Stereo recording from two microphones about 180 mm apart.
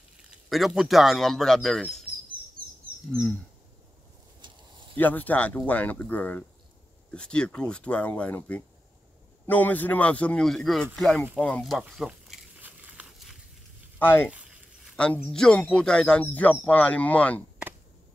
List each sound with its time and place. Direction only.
0.5 s speech: centre (ahead or behind)
3.1 s speech: 5° left (ahead or behind)
4.4 s a sound: 25° right (ahead or behind)
4.9 s speech: 10° left (ahead or behind)
11.3 s crumpling: 5° left (ahead or behind)
13.9 s speech: 10° left (ahead or behind)